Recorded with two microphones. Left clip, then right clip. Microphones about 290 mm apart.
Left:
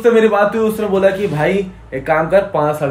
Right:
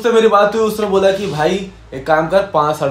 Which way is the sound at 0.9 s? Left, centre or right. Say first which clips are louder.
Left 1 dB; centre.